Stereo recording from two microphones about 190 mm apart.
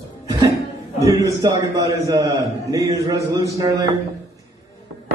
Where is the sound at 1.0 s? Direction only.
15° right (ahead or behind).